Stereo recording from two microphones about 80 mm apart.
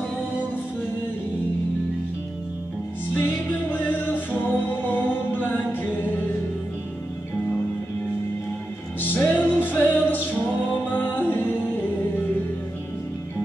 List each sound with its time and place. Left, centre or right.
3.2 s music: left
9.0 s music: left